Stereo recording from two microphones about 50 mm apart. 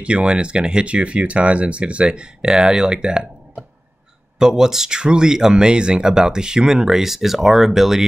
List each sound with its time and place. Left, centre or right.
0.0 s speech: right
4.4 s speech: centre